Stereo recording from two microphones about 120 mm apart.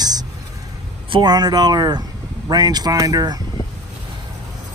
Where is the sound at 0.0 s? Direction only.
35° right (ahead or behind).